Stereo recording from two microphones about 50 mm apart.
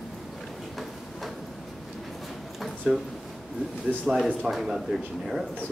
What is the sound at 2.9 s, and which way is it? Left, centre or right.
Speech, centre.